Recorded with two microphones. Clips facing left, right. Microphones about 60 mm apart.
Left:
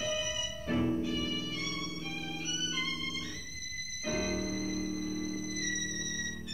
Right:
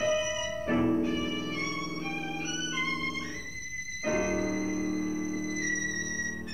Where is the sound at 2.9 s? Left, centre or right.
Right.